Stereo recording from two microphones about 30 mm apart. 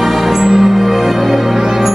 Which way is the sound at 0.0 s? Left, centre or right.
Centre.